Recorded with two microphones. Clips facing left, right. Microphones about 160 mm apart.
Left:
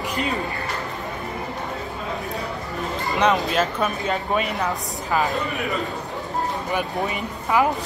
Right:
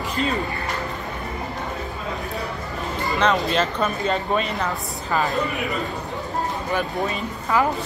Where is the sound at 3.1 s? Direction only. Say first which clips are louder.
Left 1 dB; 15° left (ahead or behind).